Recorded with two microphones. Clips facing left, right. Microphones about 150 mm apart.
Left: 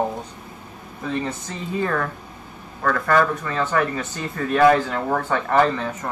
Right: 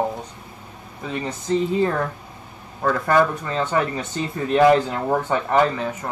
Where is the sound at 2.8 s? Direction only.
20° right (ahead or behind).